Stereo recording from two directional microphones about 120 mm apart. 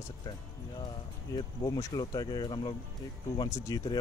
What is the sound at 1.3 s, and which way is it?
Speech, 35° left (ahead or behind).